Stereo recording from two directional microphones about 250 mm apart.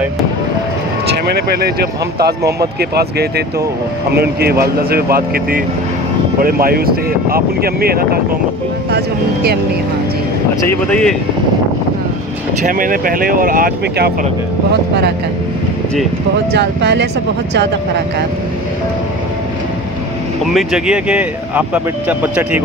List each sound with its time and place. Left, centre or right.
1.5 s speech: right
10.7 s speech: centre
12.6 s speech: right
16.5 s speech: right
20.5 s speech: centre